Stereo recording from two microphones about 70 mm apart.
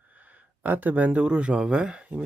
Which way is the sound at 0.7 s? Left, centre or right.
Right.